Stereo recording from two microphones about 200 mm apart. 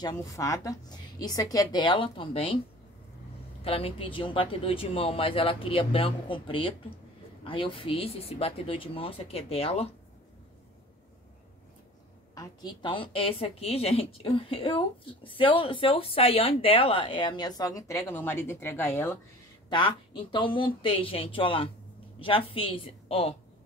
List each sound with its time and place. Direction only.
0.0 s a woman's voice: 20° left (ahead or behind)
3.6 s a woman's voice: 30° left (ahead or behind)
12.4 s a woman's voice: 20° left (ahead or behind)
19.7 s a woman's voice: 25° left (ahead or behind)